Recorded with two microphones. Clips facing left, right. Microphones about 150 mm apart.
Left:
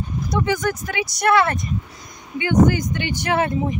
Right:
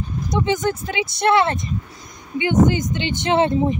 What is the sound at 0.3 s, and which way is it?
Speech, 20° right (ahead or behind).